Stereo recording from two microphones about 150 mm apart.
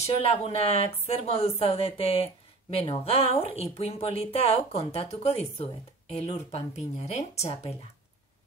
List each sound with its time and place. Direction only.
0.0 s speech: 40° left (ahead or behind)